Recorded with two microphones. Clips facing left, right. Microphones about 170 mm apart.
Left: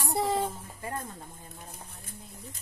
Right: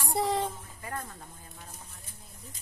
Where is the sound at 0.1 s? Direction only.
Centre (ahead or behind).